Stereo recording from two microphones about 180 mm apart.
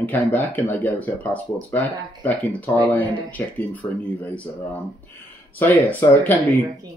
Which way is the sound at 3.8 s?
25° left (ahead or behind).